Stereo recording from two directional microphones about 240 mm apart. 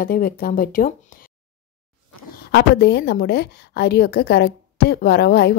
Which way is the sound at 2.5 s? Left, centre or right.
Left.